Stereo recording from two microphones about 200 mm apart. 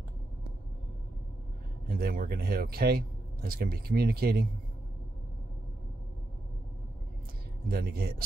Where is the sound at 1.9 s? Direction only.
50° right (ahead or behind).